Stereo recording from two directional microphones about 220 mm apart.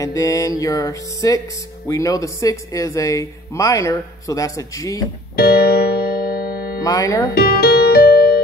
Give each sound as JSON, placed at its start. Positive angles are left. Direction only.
{"t": 0.0, "sound": "speech", "side_deg": 15}
{"t": 5.3, "sound": "music", "side_deg": 45}
{"t": 6.8, "sound": "speech", "side_deg": 15}
{"t": 7.3, "sound": "music", "side_deg": 45}